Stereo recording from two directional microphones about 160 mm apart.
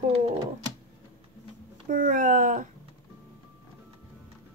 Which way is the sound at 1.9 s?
55° right (ahead or behind).